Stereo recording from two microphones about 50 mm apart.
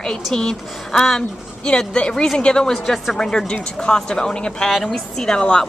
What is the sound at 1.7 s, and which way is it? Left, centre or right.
Speech, centre.